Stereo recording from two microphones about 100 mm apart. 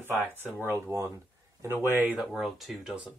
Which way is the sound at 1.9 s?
15° right (ahead or behind).